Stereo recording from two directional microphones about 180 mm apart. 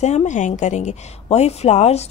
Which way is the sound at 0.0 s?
40° left (ahead or behind).